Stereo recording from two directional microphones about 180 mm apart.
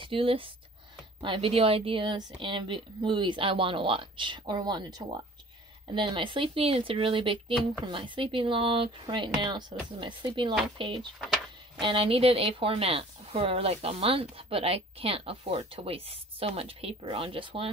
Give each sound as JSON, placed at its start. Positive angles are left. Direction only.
{"t": 0.0, "sound": "a woman's voice", "side_deg": -30}
{"t": 11.1, "sound": "a sound", "side_deg": 0}
{"t": 11.8, "sound": "a woman's voice", "side_deg": -30}